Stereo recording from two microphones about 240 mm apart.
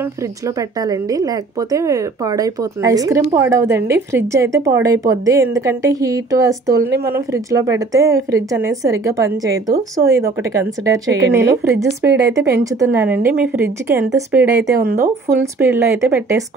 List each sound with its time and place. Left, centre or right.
0.6 s speech: centre
14.6 s speech: right
15.6 s speech: centre